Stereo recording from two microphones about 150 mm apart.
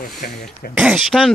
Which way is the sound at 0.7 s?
5° right (ahead or behind).